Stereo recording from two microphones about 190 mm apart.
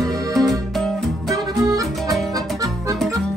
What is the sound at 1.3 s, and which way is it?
Music, 20° right (ahead or behind).